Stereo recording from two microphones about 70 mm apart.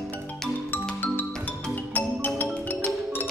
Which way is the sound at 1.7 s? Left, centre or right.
Left.